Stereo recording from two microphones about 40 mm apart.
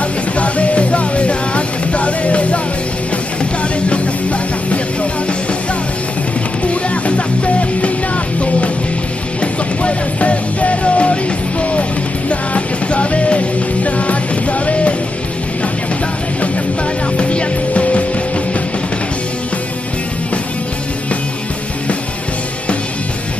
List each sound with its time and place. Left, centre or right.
0.4 s music: left
3.9 s music: left
6.7 s music: left
9.4 s music: left
12.3 s music: left
17.2 s music: left